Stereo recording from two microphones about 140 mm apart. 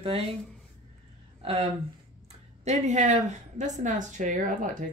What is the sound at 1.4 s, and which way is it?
Speech, 50° right (ahead or behind).